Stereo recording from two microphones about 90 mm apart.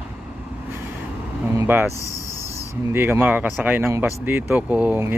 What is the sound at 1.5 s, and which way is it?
Speech, 25° right (ahead or behind).